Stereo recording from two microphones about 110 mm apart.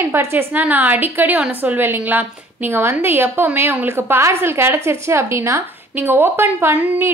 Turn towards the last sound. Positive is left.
turn(degrees=-15)  # may be behind; listen again after turning